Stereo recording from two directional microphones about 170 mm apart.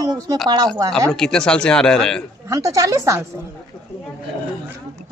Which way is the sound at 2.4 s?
20° right (ahead or behind).